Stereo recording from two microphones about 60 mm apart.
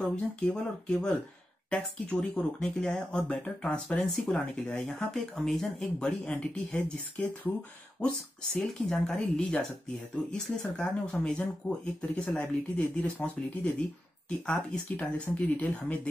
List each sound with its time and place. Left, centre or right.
0.5 s speech: centre
8.5 s speech: centre